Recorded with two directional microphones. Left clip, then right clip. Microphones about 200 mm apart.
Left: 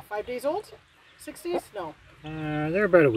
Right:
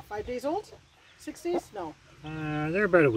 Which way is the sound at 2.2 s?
5° left (ahead or behind).